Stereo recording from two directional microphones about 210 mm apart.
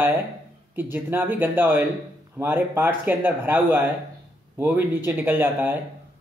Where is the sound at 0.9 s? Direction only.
10° right (ahead or behind).